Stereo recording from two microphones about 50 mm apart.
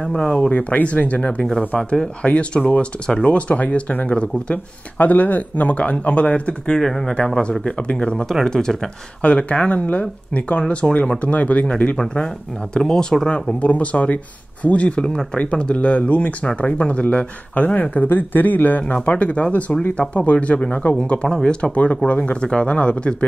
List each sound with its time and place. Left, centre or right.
0.0 s speech: centre
0.5 s speech: left
1.8 s speech: centre
2.2 s speech: left
4.9 s speech: left
6.8 s speech: centre
7.2 s speech: left
8.5 s speech: centre
9.2 s speech: left
12.7 s speech: centre
13.3 s speech: left
18.0 s speech: left